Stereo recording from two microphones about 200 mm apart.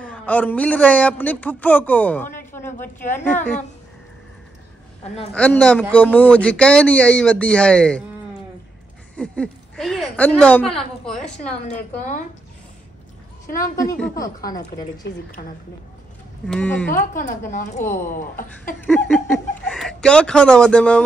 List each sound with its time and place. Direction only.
0.0 s a man's voice: 5° left (ahead or behind)
5.1 s a man's voice: 5° left (ahead or behind)
9.1 s speech: 5° left (ahead or behind)
11.1 s a woman's voice: 35° left (ahead or behind)
16.4 s a man's voice: 5° left (ahead or behind)
16.9 s a woman's voice: 40° left (ahead or behind)
18.8 s speech: 5° left (ahead or behind)